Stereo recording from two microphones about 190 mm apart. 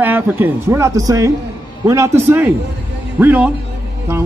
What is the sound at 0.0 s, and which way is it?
A man's voice, 10° right (ahead or behind).